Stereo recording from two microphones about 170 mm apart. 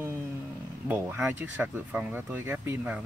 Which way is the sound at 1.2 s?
10° right (ahead or behind).